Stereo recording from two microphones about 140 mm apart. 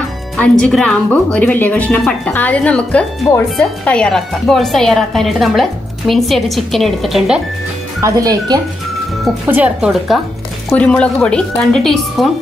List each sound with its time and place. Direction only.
0.4 s speech: 5° left (ahead or behind)
8.0 s speech: 25° right (ahead or behind)
9.5 s speech: 10° right (ahead or behind)
10.7 s a woman's voice: 10° left (ahead or behind)